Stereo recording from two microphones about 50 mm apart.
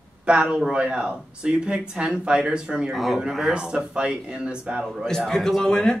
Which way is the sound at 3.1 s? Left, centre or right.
Centre.